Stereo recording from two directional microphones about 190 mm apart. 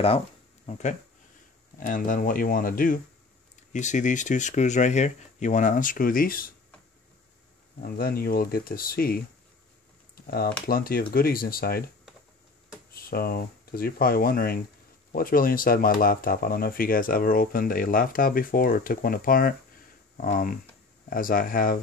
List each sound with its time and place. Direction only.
0.7 s speech: 40° left (ahead or behind)
7.8 s speech: 50° left (ahead or behind)
10.2 s speech: 50° left (ahead or behind)
12.9 s speech: 50° left (ahead or behind)